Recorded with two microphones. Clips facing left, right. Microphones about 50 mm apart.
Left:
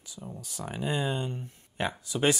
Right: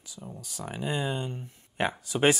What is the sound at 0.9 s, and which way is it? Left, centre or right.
Speech, right.